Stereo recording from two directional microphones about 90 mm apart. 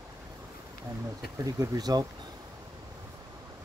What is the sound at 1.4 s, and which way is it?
Speech, 45° right (ahead or behind).